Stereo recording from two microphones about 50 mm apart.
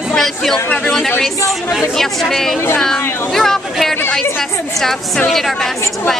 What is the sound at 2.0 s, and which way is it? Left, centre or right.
Speech, centre.